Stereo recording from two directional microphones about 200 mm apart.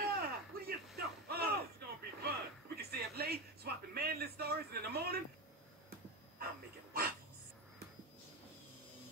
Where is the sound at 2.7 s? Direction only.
50° right (ahead or behind).